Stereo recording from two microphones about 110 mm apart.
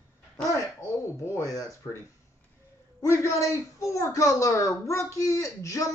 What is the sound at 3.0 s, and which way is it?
A woman's voice, 25° left (ahead or behind).